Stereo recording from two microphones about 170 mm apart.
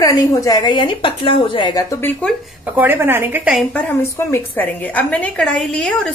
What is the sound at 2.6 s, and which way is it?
A woman's voice, 10° right (ahead or behind).